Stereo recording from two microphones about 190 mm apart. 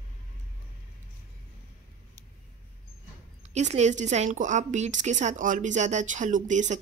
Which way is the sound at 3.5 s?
35° right (ahead or behind).